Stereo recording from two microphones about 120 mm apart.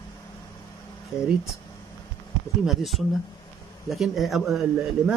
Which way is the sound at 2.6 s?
Centre (ahead or behind).